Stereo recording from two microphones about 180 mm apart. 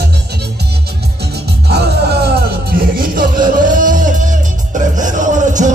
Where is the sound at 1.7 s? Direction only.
65° right (ahead or behind).